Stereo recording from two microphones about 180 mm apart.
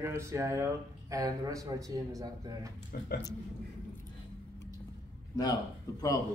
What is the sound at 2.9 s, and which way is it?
Speech, 55° left (ahead or behind).